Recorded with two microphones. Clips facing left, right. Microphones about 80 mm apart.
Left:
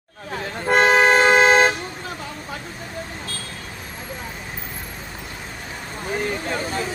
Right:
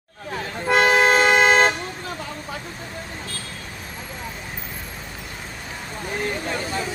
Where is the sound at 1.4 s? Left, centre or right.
Centre.